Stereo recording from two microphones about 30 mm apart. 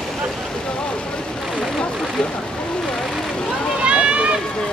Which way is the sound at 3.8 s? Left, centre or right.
Right.